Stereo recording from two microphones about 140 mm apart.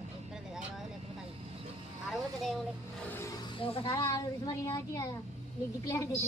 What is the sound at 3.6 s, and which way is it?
Speech, 40° left (ahead or behind).